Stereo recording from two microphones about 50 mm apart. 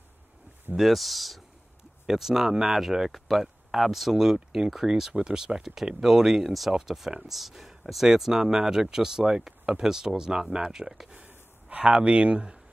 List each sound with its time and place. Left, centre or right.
0.7 s speech: centre; by 12.5 s right